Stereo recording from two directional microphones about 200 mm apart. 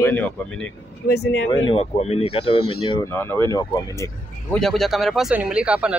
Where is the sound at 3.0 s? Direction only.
10° left (ahead or behind).